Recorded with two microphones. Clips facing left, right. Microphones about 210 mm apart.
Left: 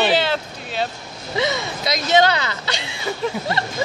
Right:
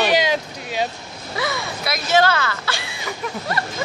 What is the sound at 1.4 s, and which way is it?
Whimper, 20° left (ahead or behind).